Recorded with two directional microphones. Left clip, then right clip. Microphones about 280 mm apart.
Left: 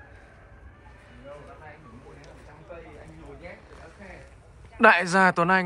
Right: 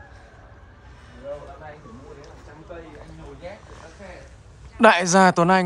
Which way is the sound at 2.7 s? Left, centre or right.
Right.